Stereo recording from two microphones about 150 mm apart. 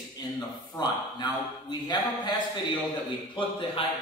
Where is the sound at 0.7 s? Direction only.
30° left (ahead or behind).